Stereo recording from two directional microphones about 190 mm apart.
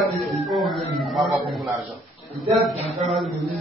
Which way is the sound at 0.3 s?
Centre (ahead or behind).